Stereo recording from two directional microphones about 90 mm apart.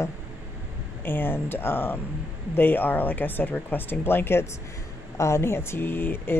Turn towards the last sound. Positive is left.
turn(degrees=25)  # may be behind; listen again after turning